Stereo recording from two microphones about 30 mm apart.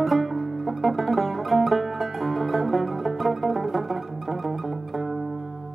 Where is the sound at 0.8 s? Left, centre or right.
Centre.